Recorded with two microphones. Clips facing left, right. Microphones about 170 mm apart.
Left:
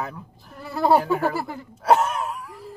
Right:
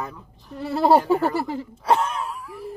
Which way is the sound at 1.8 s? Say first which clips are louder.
Left 3 dB; 5° left (ahead or behind).